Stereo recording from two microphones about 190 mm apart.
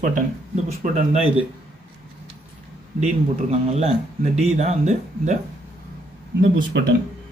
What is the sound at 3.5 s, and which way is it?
Speech, 35° right (ahead or behind).